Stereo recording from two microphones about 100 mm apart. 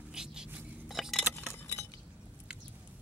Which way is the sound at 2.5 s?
10° right (ahead or behind).